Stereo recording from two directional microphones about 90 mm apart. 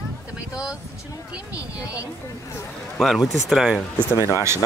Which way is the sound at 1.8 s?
35° left (ahead or behind).